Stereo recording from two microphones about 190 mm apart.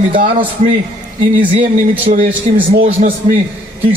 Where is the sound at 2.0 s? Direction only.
35° right (ahead or behind).